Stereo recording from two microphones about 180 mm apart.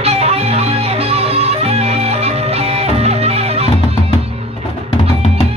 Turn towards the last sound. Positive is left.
turn(degrees=-35)  # may be behind; listen again after turning